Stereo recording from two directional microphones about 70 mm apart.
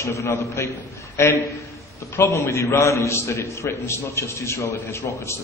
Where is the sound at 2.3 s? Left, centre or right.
Left.